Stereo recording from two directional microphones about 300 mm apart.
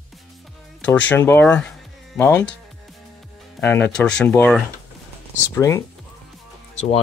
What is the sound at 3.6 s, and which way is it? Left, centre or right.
Speech, centre.